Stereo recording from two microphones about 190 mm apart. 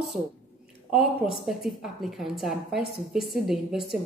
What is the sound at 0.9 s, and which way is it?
A woman's voice, centre (ahead or behind).